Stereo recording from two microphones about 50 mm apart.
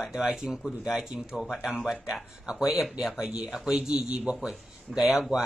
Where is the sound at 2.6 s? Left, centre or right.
Centre; by 4.2 s right.